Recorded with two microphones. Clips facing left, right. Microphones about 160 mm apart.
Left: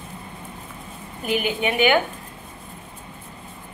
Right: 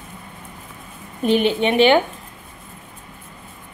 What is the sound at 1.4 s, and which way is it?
Speech, 30° right (ahead or behind).